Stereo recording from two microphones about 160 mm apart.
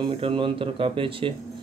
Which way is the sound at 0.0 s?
30° right (ahead or behind).